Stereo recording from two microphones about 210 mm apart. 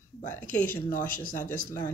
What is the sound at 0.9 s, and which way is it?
Speech, 40° left (ahead or behind).